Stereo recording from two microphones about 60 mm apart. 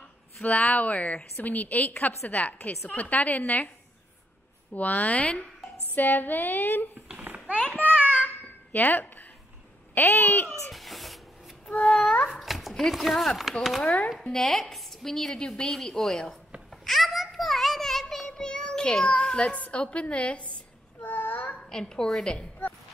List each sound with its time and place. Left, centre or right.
0.4 s a woman's voice: left
4.7 s a woman's voice: left
5.8 s a woman's voice: left
7.5 s a sound: left
8.7 s a woman's voice: left
10.7 s speech: centre
11.6 s babbling: centre
12.4 s speech: centre
13.8 s a woman's voice: left
14.2 s a woman's voice: centre
16.8 s child singing: centre; by 20.6 s left
21.0 s a sound: left
21.5 s a woman's voice: centre